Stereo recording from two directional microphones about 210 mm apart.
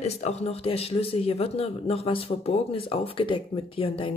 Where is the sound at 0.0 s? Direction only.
30° left (ahead or behind).